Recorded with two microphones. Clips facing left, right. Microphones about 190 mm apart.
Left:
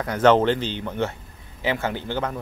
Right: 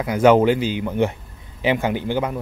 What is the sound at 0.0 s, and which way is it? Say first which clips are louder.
A man's voice: right 3 dB; 10° right (ahead or behind).